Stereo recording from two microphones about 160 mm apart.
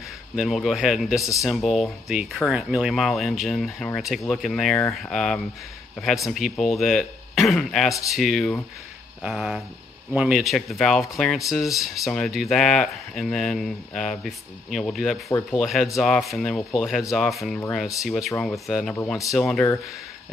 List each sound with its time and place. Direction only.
0.4 s speech: centre (ahead or behind)